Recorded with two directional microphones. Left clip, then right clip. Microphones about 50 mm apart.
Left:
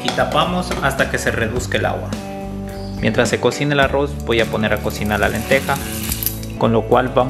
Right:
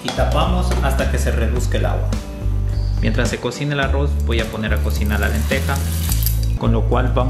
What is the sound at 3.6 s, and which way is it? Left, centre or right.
Speech, left.